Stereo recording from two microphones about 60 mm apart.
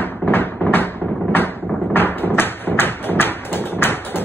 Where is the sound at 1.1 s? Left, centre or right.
Left.